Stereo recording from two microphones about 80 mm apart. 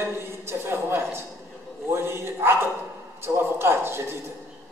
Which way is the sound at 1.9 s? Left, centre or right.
Right.